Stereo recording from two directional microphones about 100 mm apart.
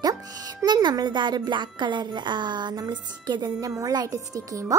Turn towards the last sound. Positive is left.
turn(degrees=-35)  # may be behind; listen again after turning